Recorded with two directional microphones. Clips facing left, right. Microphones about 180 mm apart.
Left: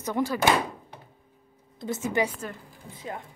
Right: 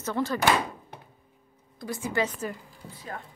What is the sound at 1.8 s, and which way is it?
A woman's voice, 20° left (ahead or behind).